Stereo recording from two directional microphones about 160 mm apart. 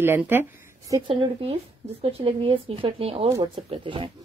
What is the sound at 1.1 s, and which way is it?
A woman's voice, 30° right (ahead or behind).